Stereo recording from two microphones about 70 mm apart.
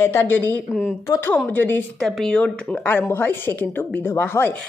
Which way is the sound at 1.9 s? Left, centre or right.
Centre.